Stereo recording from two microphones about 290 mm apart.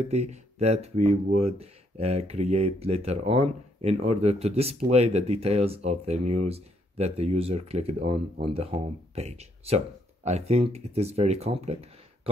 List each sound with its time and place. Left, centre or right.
0.0 s speech: right